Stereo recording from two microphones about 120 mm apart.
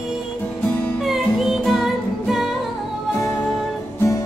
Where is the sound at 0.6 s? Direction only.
15° left (ahead or behind).